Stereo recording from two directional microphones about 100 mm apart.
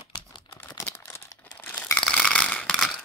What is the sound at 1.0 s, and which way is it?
Crumpling, 30° left (ahead or behind).